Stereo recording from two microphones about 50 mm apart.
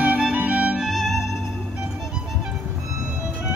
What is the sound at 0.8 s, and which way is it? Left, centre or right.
Music, centre.